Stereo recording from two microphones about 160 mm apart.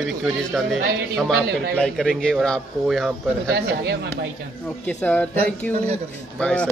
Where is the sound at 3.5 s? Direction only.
90° right.